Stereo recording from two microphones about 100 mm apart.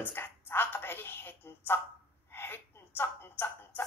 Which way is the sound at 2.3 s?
20° left (ahead or behind).